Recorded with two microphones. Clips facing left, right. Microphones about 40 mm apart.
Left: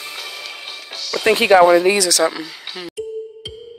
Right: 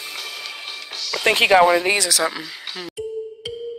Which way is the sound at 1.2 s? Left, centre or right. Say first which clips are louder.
Left 2 dB; right.